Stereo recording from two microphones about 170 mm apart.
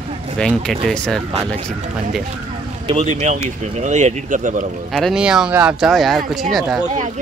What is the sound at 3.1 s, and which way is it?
Speech, 45° right (ahead or behind).